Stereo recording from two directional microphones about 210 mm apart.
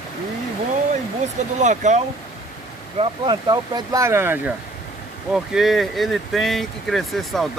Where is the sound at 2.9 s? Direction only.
20° right (ahead or behind).